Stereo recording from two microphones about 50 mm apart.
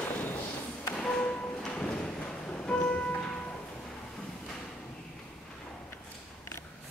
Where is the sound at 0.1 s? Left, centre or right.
Left.